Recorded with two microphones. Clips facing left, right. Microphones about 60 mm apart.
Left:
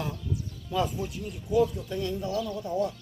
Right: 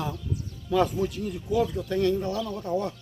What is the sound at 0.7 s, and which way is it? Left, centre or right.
Speech, right.